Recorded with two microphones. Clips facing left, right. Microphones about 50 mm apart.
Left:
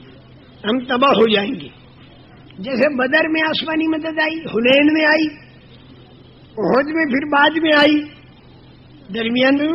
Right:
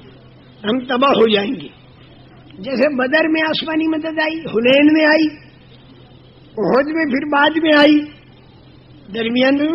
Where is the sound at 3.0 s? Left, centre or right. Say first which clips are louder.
Right 1 dB; centre.